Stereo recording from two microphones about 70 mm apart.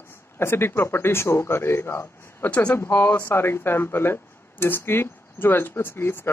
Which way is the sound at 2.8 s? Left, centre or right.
Left.